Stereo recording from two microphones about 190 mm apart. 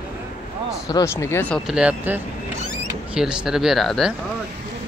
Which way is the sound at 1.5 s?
5° right (ahead or behind).